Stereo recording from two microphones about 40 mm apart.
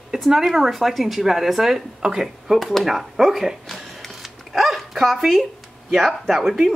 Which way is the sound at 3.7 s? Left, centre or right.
Centre.